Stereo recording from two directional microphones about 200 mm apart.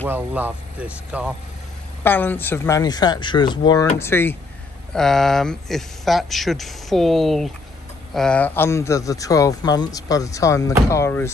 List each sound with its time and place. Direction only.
0.0 s speech: 10° right (ahead or behind)
2.0 s speech: 10° left (ahead or behind)